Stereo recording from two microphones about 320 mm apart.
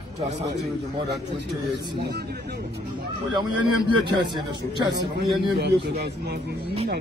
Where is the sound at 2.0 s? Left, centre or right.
Right.